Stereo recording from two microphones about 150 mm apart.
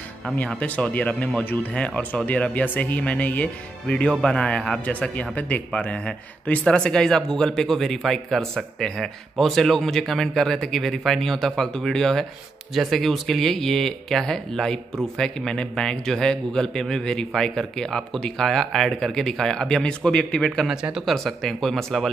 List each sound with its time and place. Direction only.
0.4 s speech: 10° left (ahead or behind)